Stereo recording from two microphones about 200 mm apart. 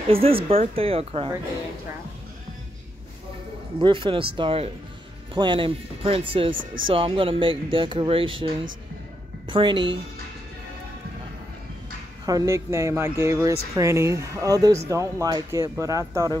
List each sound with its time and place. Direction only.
0.1 s speech: 30° right (ahead or behind)
3.8 s speech: 25° right (ahead or behind)
9.5 s speech: 25° right (ahead or behind)
12.3 s speech: 15° right (ahead or behind)